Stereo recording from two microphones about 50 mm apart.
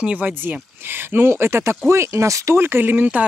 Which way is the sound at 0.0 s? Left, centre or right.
Right.